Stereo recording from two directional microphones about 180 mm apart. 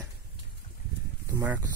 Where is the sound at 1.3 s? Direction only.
15° right (ahead or behind).